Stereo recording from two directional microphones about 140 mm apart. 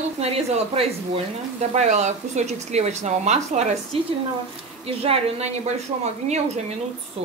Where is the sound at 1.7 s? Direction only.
55° right (ahead or behind).